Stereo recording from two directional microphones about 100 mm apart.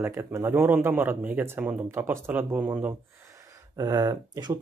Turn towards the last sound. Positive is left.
turn(degrees=-40)  # may be behind; listen again after turning